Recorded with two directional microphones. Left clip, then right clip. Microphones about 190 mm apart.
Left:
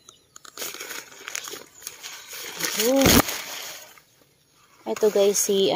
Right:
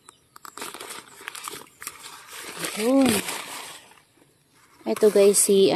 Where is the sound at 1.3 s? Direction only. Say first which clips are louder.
Left 4 dB; 25° right (ahead or behind).